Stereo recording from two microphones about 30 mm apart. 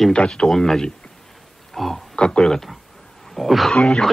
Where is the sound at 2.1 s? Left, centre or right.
Left.